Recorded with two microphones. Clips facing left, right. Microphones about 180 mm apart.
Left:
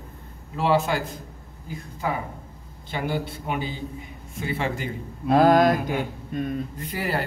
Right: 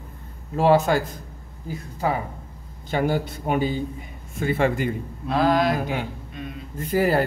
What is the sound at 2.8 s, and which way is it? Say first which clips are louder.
Speech: right 5 dB; 45° right (ahead or behind).